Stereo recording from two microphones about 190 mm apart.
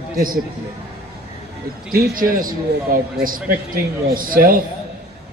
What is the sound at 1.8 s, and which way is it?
Speech, 50° right (ahead or behind).